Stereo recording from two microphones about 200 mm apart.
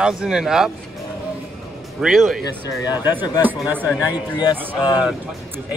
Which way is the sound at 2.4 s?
20° left (ahead or behind).